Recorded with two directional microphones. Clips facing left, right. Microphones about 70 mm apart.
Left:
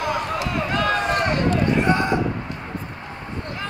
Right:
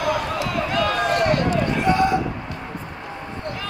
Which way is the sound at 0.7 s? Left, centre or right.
Left.